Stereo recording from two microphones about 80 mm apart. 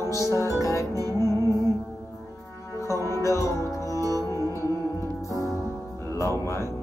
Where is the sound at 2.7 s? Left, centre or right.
Left.